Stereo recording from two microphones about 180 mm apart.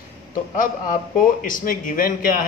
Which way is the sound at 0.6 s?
50° left (ahead or behind).